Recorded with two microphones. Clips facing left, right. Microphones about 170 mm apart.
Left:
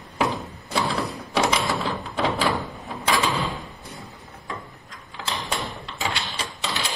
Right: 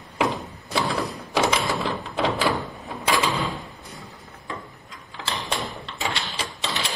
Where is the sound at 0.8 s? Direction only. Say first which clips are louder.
Even; centre (ahead or behind).